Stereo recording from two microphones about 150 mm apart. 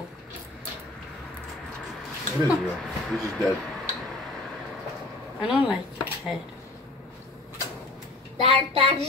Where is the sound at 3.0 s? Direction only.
Centre (ahead or behind).